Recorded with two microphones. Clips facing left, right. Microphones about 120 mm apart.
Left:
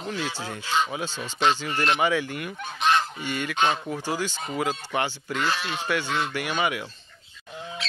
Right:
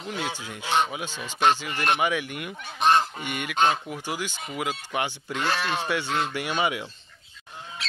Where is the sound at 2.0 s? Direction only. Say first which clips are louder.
Left 2 dB; 15° right (ahead or behind).